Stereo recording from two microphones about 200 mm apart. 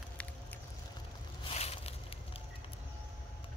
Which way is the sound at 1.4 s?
30° left (ahead or behind).